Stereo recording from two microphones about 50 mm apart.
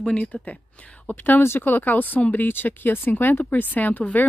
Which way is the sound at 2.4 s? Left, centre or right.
Left.